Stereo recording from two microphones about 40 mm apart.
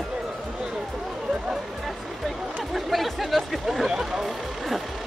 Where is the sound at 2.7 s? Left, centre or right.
Centre.